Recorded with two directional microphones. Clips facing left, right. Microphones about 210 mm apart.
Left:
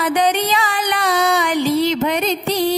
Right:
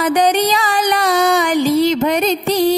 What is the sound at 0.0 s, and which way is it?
Music, 40° right (ahead or behind).